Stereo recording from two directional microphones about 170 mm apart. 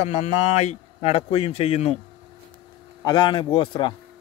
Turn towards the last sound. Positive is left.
turn(degrees=25)  # may be behind; listen again after turning